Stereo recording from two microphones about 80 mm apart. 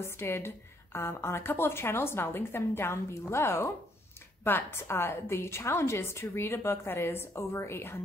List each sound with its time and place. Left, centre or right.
0.0 s a woman's voice: left